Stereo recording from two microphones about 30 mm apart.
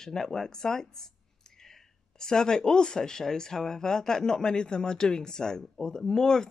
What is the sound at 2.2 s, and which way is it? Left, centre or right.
Speech, left.